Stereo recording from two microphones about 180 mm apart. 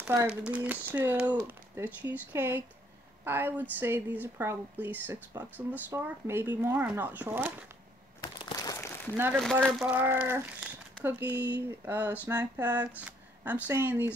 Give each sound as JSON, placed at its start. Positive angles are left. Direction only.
{"t": 0.0, "sound": "speech", "side_deg": -10}
{"t": 8.5, "sound": "a sound", "side_deg": 20}
{"t": 9.1, "sound": "speech", "side_deg": -10}
{"t": 9.4, "sound": "speech", "side_deg": 5}
{"t": 11.3, "sound": "speech", "side_deg": -70}
{"t": 11.8, "sound": "speech", "side_deg": -10}